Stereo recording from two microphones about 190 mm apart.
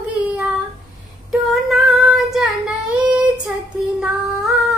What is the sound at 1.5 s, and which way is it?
Female singing, centre (ahead or behind).